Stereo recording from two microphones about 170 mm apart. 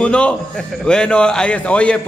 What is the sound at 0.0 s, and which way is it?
A man's voice, 5° left (ahead or behind).